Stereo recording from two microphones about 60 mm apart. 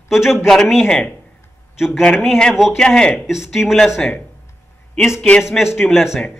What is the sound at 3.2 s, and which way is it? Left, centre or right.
Speech, centre.